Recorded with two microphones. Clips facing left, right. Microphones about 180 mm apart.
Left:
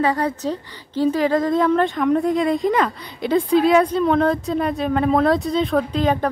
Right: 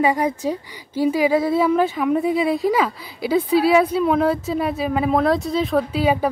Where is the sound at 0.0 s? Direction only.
10° right (ahead or behind).